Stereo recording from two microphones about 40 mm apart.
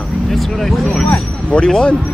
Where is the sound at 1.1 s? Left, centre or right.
Left.